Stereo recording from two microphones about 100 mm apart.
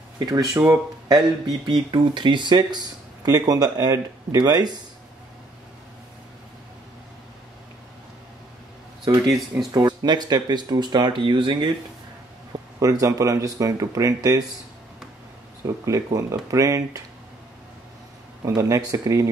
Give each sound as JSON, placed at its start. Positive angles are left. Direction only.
{"t": 0.2, "sound": "speech", "side_deg": -40}
{"t": 1.1, "sound": "speech", "side_deg": -50}
{"t": 9.0, "sound": "speech", "side_deg": -40}
{"t": 12.8, "sound": "speech", "side_deg": -35}
{"t": 15.6, "sound": "speech", "side_deg": -35}
{"t": 18.5, "sound": "speech", "side_deg": -35}